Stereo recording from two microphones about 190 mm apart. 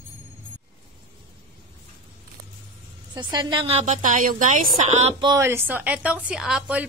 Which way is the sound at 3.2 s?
25° right (ahead or behind).